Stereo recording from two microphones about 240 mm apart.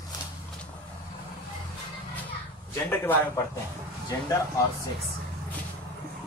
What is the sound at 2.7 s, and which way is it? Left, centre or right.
Speech, centre.